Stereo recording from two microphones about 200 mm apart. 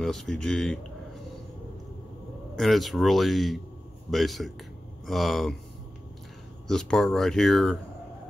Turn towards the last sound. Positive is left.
turn(degrees=0)  # may be behind; listen again after turning